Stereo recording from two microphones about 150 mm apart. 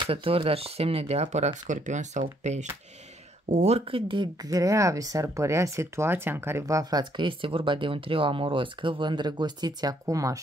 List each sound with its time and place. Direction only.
0.0 s speech: 40° right (ahead or behind); by 10.4 s 20° right (ahead or behind)